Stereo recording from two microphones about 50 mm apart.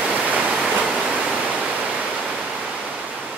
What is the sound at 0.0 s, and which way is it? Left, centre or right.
Waterfall, right.